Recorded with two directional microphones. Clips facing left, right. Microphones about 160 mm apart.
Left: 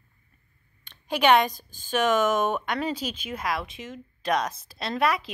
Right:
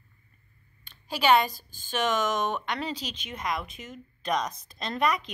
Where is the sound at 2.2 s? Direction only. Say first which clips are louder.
Left 4 dB; 10° left (ahead or behind).